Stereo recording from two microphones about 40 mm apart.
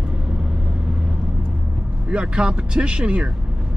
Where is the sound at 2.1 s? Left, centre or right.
Right.